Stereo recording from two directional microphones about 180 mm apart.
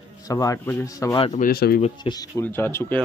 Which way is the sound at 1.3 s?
55° left (ahead or behind).